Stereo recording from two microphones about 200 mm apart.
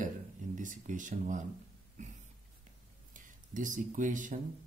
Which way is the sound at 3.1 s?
40° right (ahead or behind).